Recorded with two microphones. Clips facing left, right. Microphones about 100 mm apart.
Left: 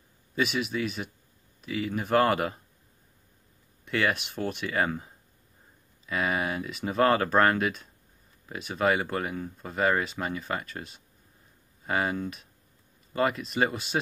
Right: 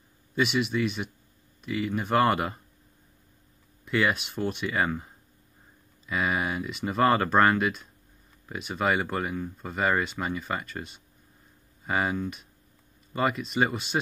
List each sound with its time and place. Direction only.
0.4 s speech: centre (ahead or behind)
3.8 s speech: centre (ahead or behind)